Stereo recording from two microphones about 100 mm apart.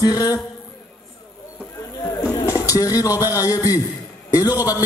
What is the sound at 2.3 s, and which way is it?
A man's voice, 30° left (ahead or behind).